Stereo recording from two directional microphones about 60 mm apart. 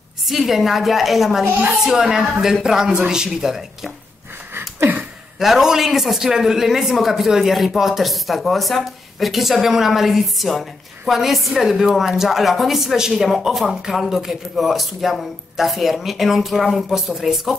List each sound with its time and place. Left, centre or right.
0.3 s speech: centre
1.4 s speech: right
1.8 s speech: centre
4.6 s a sound: right
5.4 s speech: centre